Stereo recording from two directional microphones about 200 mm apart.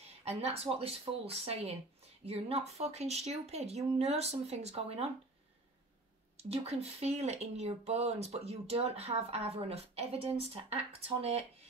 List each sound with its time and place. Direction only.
0.2 s speech: 30° right (ahead or behind)
6.3 s speech: 30° right (ahead or behind)